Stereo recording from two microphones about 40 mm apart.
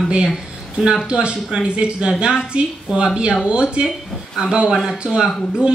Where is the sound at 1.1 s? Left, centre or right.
Right.